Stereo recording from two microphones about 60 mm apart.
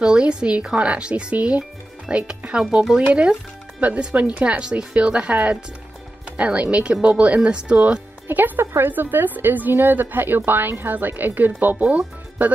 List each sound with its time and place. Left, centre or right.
0.0 s speech: centre
3.8 s speech: right
8.3 s speech: right